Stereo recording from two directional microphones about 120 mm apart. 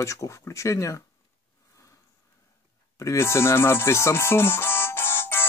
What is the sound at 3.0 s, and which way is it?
Music, 25° left (ahead or behind).